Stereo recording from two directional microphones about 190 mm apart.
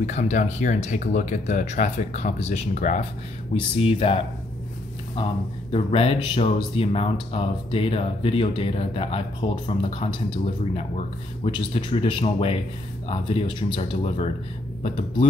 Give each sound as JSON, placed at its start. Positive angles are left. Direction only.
{"t": 0.0, "sound": "speech", "side_deg": 40}
{"t": 5.7, "sound": "speech", "side_deg": 30}